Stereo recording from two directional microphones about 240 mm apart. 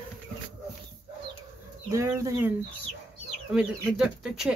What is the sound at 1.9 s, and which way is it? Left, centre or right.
Speech, centre.